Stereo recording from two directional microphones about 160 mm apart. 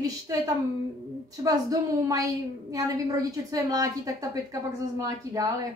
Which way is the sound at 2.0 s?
20° right (ahead or behind).